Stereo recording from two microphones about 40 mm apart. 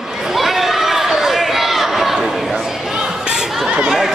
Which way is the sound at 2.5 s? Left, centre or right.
Centre.